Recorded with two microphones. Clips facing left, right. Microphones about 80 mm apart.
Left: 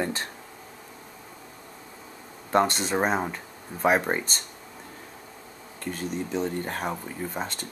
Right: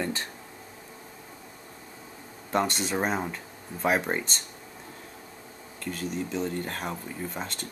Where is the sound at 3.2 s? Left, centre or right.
Centre.